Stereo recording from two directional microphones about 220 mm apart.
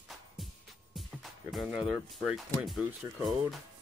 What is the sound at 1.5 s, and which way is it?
Speech, 5° right (ahead or behind).